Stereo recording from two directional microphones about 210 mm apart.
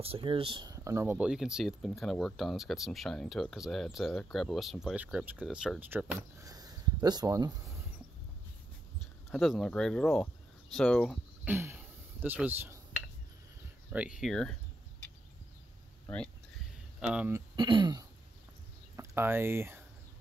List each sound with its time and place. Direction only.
0.0 s speech: 25° right (ahead or behind)
9.3 s speech: centre (ahead or behind)
11.4 s throat clearing: 10° right (ahead or behind)
13.9 s speech: 5° right (ahead or behind)
17.0 s speech: 5° right (ahead or behind)
17.6 s speech: 20° right (ahead or behind)
18.9 s speech: 10° right (ahead or behind)